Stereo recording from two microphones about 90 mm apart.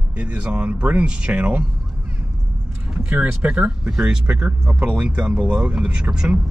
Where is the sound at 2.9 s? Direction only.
15° right (ahead or behind).